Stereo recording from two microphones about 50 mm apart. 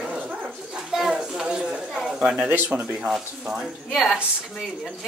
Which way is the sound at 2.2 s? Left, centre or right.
Right.